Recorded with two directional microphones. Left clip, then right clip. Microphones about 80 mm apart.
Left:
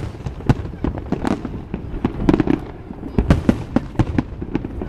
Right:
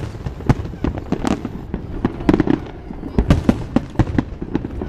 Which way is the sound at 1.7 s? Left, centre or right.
Centre.